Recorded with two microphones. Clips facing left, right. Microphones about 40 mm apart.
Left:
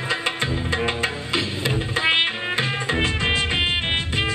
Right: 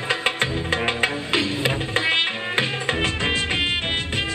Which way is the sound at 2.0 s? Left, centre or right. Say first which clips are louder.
Left 3 dB; centre.